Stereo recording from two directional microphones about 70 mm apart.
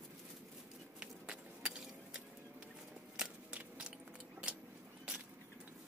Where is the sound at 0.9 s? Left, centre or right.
Centre.